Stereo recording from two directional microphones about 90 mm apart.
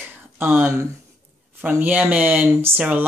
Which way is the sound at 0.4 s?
20° right (ahead or behind).